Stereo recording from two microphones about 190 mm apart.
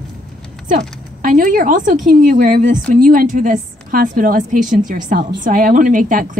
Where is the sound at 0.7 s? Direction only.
45° right (ahead or behind).